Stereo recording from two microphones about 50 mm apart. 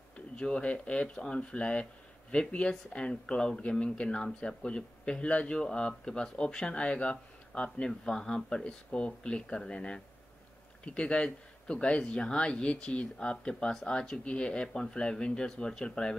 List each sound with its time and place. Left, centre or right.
0.4 s speech: left